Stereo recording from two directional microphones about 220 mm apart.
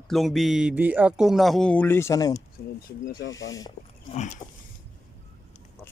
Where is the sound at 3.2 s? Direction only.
60° left (ahead or behind).